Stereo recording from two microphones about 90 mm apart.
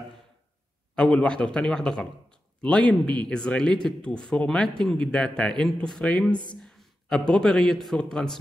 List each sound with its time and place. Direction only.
0.9 s speech: 10° left (ahead or behind)
6.3 s speech: 60° left (ahead or behind)
6.6 s a man's voice: 5° left (ahead or behind)